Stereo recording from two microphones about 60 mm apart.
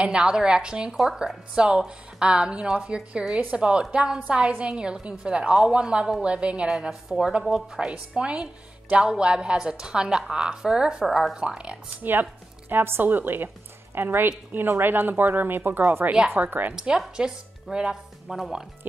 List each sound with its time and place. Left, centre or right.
0.0 s a woman's voice: centre
6.7 s a woman's voice: centre
12.0 s a woman's voice: right
16.7 s a woman's voice: centre